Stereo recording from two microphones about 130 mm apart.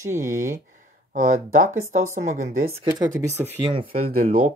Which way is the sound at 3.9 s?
90° right.